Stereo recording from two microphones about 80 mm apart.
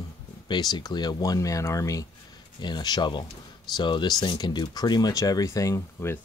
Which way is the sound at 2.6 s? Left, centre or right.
Left.